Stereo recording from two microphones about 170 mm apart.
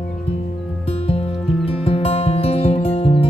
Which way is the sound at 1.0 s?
35° left (ahead or behind).